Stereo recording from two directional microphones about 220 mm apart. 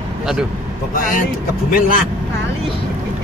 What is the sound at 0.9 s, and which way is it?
Speech, 40° left (ahead or behind).